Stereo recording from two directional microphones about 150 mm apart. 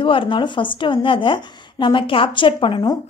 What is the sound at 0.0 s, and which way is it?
Speech, 35° left (ahead or behind).